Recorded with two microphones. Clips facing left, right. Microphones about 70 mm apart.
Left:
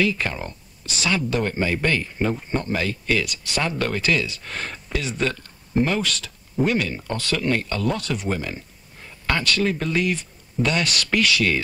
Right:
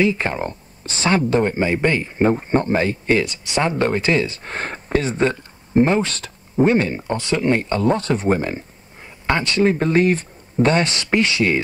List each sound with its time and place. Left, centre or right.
0.0 s speech: right